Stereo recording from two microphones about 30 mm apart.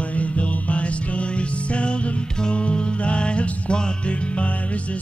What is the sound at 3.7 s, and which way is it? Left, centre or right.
Music, left.